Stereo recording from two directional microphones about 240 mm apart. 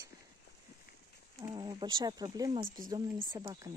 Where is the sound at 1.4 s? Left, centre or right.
Centre.